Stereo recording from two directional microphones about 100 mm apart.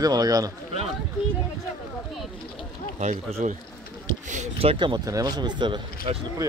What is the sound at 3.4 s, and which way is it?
Speech, 90° right.